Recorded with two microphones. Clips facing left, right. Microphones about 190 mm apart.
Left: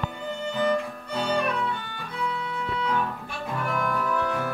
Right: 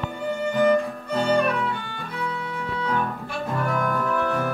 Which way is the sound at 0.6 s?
55° right (ahead or behind).